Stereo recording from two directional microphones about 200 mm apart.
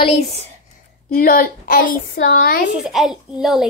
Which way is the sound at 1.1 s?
45° left (ahead or behind).